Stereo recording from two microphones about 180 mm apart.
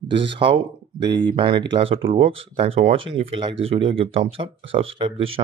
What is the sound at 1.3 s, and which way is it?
Speech, 30° right (ahead or behind).